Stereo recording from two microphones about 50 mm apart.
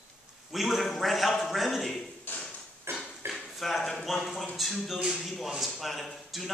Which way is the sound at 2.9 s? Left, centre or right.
Right.